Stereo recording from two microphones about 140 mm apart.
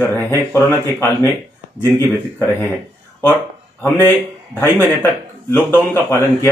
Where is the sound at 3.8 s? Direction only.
15° left (ahead or behind).